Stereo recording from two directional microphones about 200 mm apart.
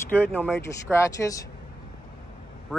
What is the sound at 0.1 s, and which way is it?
Speech, 10° left (ahead or behind).